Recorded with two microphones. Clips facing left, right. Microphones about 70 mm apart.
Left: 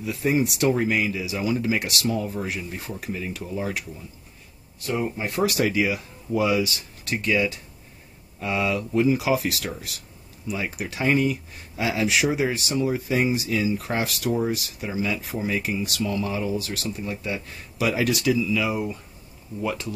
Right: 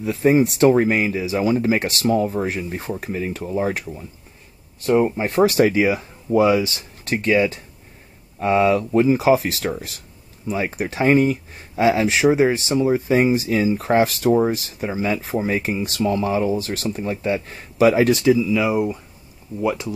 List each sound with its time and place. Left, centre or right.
0.0 s speech: right; by 19.9 s centre